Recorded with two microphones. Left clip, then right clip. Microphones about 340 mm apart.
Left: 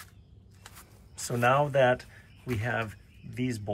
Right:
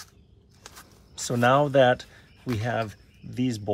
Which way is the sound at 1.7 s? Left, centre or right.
Centre.